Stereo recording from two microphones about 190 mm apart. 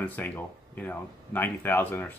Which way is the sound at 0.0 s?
10° left (ahead or behind).